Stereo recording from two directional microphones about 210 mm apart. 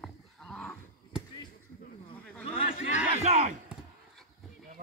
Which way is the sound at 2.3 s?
5° left (ahead or behind).